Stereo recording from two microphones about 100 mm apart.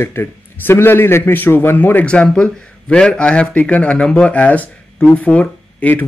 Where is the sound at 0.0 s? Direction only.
25° left (ahead or behind).